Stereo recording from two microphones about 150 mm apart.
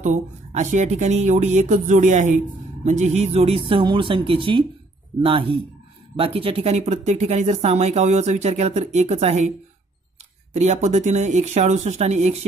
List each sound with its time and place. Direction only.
0.0 s a man's voice: 50° right (ahead or behind)
10.5 s speech: 50° right (ahead or behind)